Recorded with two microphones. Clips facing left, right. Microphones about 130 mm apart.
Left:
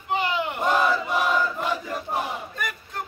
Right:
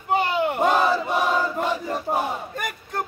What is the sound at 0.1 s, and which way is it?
Battle cry, 45° right (ahead or behind).